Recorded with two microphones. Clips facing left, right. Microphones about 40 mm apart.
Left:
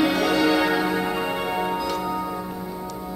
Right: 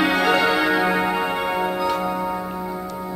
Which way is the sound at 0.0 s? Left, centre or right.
Right.